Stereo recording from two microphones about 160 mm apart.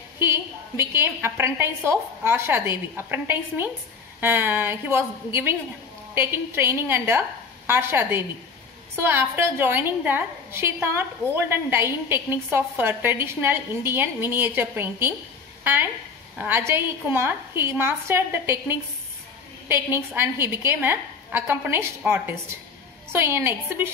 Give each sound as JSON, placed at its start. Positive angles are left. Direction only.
{"t": 0.2, "sound": "a woman's voice", "side_deg": -15}